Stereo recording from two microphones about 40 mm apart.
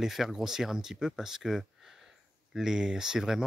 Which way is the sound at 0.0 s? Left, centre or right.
Centre.